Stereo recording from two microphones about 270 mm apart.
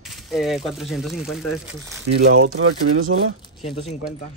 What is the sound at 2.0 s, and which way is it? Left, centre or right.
Speech, right.